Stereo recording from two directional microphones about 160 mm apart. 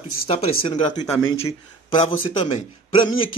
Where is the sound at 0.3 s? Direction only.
30° left (ahead or behind).